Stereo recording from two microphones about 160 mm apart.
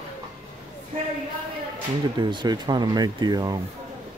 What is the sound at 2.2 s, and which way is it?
Speech, 30° right (ahead or behind).